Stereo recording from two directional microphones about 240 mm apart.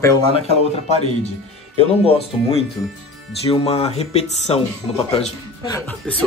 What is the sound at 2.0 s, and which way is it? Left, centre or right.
Speech, left.